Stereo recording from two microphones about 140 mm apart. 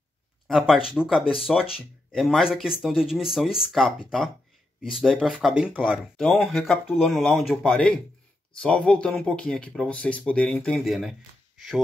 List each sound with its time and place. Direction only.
0.5 s speech: 5° right (ahead or behind)
4.9 s speech: centre (ahead or behind)
6.1 s speech: 5° left (ahead or behind)